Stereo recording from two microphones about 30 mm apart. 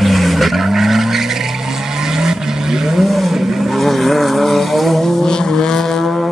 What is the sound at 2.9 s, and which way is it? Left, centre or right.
Vehicle, centre.